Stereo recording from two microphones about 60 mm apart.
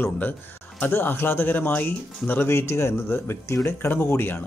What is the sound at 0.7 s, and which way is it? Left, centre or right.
Speech, left.